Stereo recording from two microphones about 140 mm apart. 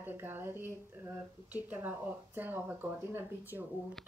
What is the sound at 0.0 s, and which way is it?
Speech, 15° right (ahead or behind).